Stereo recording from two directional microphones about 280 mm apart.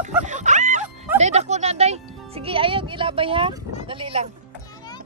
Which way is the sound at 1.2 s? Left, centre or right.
Right.